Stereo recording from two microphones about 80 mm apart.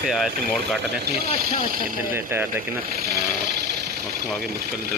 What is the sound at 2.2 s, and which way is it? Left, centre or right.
Speech, right.